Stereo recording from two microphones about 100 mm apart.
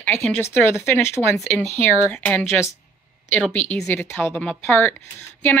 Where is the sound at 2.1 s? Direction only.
15° left (ahead or behind).